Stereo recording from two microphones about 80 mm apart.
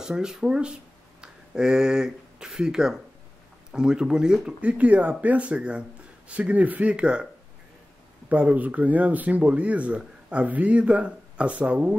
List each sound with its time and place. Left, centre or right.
0.0 s speech: centre
8.3 s speech: centre